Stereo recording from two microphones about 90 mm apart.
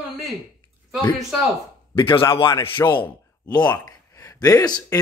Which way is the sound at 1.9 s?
80° left.